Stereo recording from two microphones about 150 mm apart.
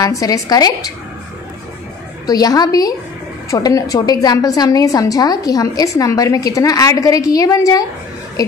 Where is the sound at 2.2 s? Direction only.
25° left (ahead or behind).